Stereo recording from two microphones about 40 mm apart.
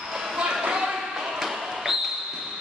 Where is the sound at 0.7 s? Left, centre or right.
Centre.